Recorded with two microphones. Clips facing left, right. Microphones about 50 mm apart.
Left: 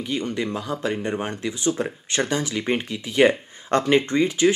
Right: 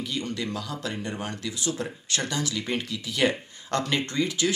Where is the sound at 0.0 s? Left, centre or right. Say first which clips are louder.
Left 5 dB; left.